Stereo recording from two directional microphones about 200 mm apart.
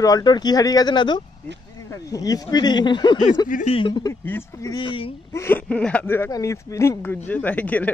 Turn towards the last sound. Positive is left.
turn(degrees=10)  # may be behind; listen again after turning